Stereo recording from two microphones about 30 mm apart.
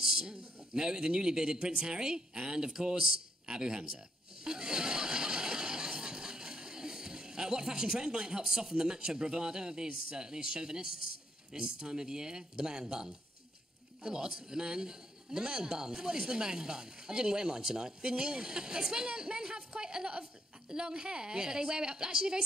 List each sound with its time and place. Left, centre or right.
0.0 s a woman's voice: right
4.5 s a sound: right
8.5 s a woman's voice: centre